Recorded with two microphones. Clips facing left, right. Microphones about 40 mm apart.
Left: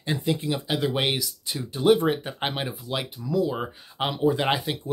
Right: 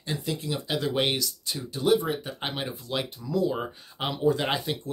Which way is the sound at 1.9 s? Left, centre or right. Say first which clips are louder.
Left 2 dB; left.